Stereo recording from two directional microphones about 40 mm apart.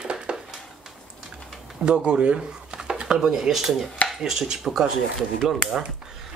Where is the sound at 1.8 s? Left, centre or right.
Right; by 5.6 s centre.